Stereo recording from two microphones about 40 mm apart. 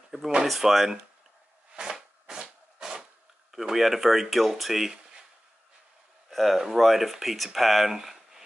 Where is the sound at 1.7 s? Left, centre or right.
Centre.